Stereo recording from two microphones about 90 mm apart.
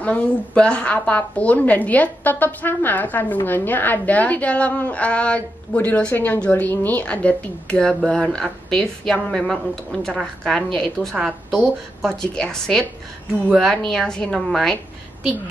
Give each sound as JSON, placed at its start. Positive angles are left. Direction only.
{"t": 0.0, "sound": "a woman's voice", "side_deg": 15}
{"t": 11.1, "sound": "a woman's voice", "side_deg": -10}
{"t": 12.1, "sound": "a woman's voice", "side_deg": 5}